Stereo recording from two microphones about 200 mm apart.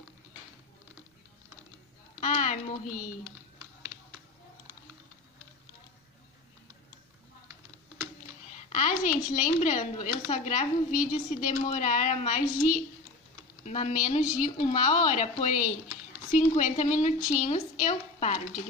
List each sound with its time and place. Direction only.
2.1 s speech: 40° left (ahead or behind)
8.5 s a woman's voice: 35° left (ahead or behind)